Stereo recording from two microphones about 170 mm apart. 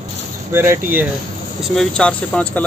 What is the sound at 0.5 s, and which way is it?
Speech, 15° right (ahead or behind).